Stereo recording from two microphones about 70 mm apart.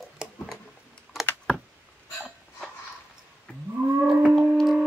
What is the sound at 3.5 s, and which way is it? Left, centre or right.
Whale vocalization, centre.